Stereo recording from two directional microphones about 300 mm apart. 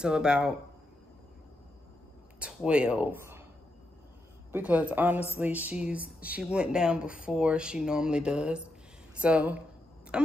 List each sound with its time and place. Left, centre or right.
0.0 s speech: centre
2.4 s speech: centre
4.5 s speech: centre